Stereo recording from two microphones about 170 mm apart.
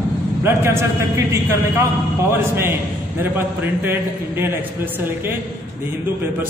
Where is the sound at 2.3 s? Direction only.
15° right (ahead or behind).